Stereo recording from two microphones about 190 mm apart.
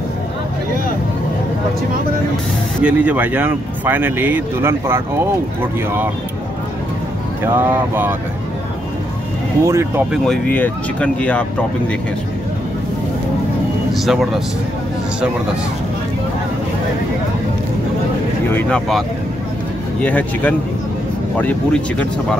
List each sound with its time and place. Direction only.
2.8 s speech: 5° right (ahead or behind)
7.4 s speech: 10° right (ahead or behind)
9.6 s speech: 15° right (ahead or behind)
10.1 s speech: centre (ahead or behind)
13.9 s speech: centre (ahead or behind)
18.5 s speech: 10° left (ahead or behind)